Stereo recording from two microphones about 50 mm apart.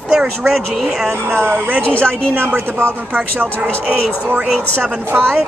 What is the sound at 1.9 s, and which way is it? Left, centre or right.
Speech, left.